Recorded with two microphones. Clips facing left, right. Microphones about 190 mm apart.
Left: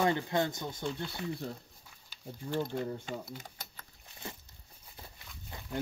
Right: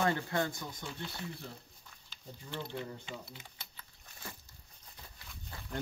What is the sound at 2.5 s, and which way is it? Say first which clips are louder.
Speech: left 7 dB; 45° left (ahead or behind).